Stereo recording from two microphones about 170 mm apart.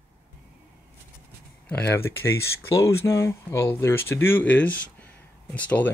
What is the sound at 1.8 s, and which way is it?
Speech, 10° left (ahead or behind).